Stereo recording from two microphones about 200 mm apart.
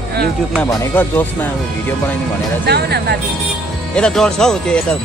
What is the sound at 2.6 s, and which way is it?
Speech, 55° right (ahead or behind).